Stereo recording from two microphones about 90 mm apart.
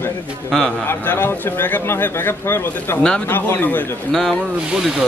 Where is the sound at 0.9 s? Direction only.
25° left (ahead or behind).